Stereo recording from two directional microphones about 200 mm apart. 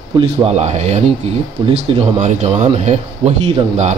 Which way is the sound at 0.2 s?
30° right (ahead or behind).